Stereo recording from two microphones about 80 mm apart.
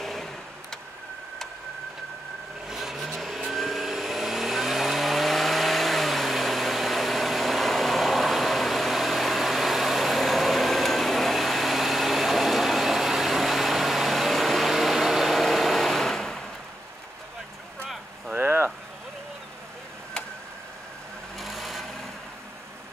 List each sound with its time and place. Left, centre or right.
0.0 s vehicle: centre
2.7 s vehicle: centre
18.3 s a sound: right
21.4 s vehicle: centre